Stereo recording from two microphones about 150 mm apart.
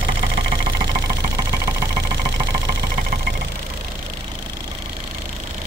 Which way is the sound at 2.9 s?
70° right (ahead or behind).